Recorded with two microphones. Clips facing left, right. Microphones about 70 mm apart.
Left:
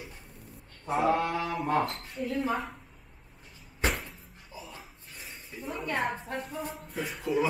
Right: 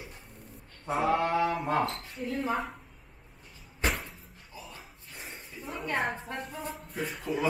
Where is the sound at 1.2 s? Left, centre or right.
Right.